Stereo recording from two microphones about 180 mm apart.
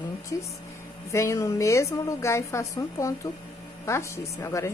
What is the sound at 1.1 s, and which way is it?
A woman's voice, 15° left (ahead or behind).